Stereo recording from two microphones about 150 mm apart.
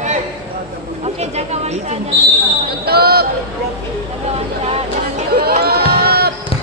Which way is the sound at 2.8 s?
90° right.